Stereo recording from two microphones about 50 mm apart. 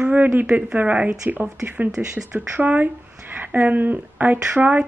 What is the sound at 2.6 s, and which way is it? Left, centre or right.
A woman's voice, right.